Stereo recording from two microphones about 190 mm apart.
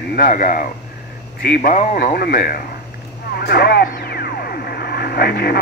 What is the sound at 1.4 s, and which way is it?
Speech, 60° left (ahead or behind).